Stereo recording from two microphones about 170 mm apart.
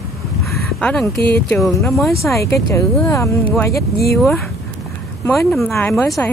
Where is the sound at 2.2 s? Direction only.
15° left (ahead or behind).